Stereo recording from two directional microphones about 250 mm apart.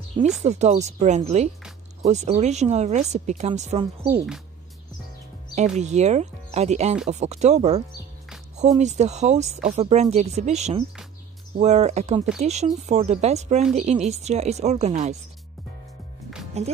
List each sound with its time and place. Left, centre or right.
0.4 s a woman's voice: right
5.5 s a woman's voice: right
16.6 s a woman's voice: right